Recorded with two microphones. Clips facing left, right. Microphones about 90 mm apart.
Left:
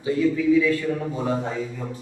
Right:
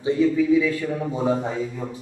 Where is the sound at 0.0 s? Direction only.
20° right (ahead or behind).